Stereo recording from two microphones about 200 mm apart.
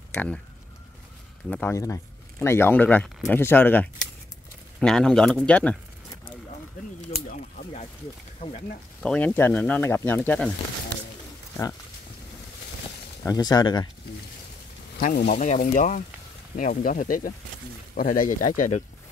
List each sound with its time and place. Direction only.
0.1 s speech: 5° left (ahead or behind)
1.5 s speech: 10° left (ahead or behind)
7.1 s a sound: 50° left (ahead or behind)
9.0 s speech: 5° left (ahead or behind)
13.2 s speech: 20° left (ahead or behind)
15.0 s speech: 40° left (ahead or behind)